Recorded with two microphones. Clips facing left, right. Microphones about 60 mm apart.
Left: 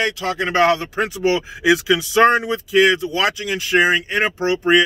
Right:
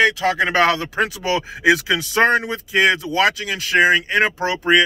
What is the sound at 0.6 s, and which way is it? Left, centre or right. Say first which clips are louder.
Speech: left 1 dB; right.